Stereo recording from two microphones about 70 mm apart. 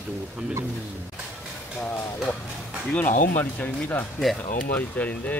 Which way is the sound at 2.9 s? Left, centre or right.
Left.